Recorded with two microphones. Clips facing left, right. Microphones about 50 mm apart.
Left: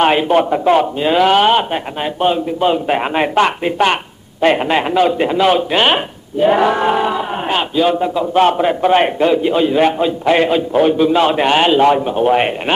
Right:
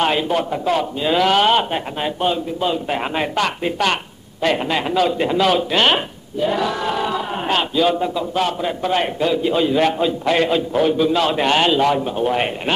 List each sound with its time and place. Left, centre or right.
0.0 s speech: left
6.4 s speech: left
8.4 s speech: left